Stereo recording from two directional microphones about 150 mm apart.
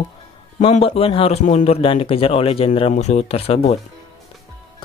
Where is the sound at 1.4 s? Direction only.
50° left (ahead or behind).